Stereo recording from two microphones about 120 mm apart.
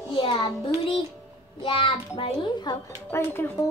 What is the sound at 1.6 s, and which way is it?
Speech, 50° left (ahead or behind).